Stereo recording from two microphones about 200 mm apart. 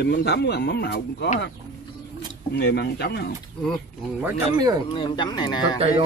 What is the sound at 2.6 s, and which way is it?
Speech, 55° left (ahead or behind).